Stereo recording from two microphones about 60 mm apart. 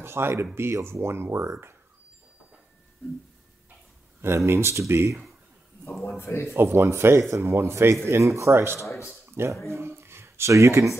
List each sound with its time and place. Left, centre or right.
0.0 s speech: right
4.5 s speech: right
6.0 s a man's voice: left
6.5 s speech: right
7.2 s speech: right
7.4 s speech: right
9.7 s a sound: right
10.5 s speech: right